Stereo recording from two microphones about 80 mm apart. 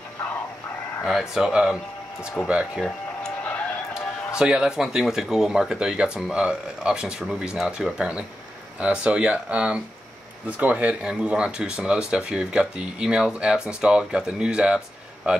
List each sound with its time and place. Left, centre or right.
1.0 s speech: centre
3.4 s a sound: centre
4.4 s speech: centre